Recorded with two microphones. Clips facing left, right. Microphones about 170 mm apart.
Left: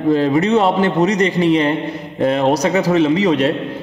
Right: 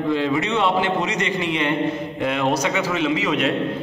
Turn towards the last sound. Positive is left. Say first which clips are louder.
# left 7 dB
turn(degrees=35)  # may be behind; listen again after turning